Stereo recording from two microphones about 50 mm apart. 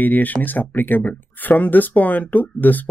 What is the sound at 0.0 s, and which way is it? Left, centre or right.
Speech, left.